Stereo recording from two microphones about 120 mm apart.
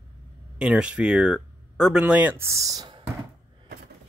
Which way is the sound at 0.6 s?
5° right (ahead or behind).